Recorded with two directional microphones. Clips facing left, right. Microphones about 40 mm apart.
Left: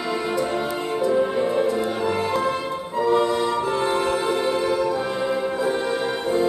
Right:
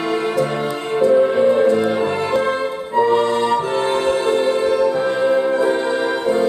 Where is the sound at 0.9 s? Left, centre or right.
Right.